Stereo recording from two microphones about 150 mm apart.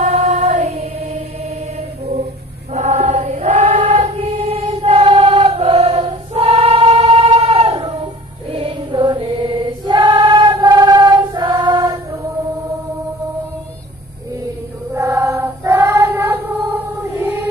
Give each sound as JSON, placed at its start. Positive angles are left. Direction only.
{"t": 0.0, "sound": "choir", "side_deg": -50}
{"t": 0.6, "sound": "music", "side_deg": -45}
{"t": 2.7, "sound": "choir", "side_deg": -50}
{"t": 15.0, "sound": "child singing", "side_deg": -20}